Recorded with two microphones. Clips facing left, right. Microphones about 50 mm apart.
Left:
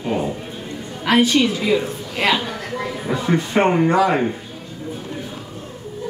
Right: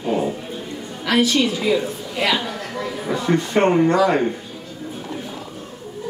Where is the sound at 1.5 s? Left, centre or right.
Centre.